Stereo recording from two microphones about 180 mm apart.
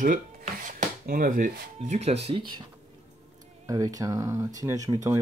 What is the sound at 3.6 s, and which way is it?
Speech, 20° right (ahead or behind).